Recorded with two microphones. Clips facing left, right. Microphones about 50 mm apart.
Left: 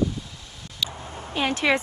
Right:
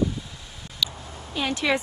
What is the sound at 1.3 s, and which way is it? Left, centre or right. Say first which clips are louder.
Speech: left 2 dB; left.